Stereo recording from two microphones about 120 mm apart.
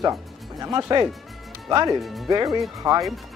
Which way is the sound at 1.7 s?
30° right (ahead or behind).